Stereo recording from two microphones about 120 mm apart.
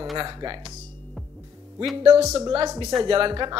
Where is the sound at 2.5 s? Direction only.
35° right (ahead or behind).